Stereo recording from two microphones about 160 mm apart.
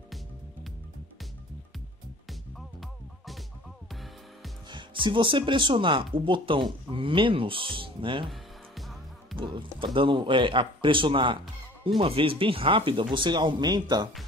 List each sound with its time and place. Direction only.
2.2 s music: centre (ahead or behind)
4.6 s speech: 30° right (ahead or behind)
8.3 s music: centre (ahead or behind)
9.4 s speech: 30° right (ahead or behind)